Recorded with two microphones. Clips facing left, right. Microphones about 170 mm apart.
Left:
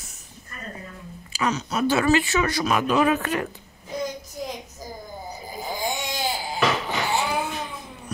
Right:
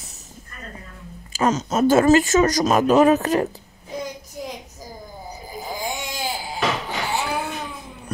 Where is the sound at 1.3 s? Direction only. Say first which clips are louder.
Right 5 dB; 45° right (ahead or behind).